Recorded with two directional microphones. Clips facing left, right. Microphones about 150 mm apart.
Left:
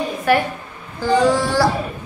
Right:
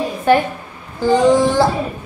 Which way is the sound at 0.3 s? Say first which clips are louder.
Right 4 dB; 25° right (ahead or behind).